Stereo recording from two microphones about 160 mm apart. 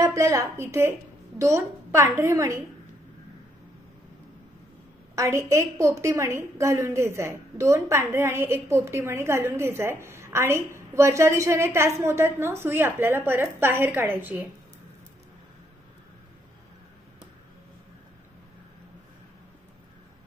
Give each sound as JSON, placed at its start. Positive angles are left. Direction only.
{"t": 0.0, "sound": "a woman's voice", "side_deg": -20}
{"t": 5.1, "sound": "a woman's voice", "side_deg": -20}